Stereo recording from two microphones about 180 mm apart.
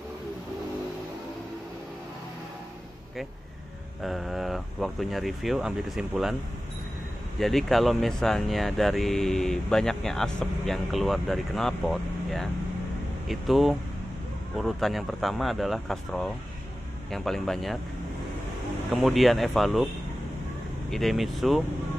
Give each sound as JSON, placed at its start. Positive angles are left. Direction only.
{"t": 4.0, "sound": "speech", "side_deg": 0}
{"t": 7.3, "sound": "speech", "side_deg": 0}
{"t": 18.9, "sound": "speech", "side_deg": 0}
{"t": 20.9, "sound": "speech", "side_deg": 0}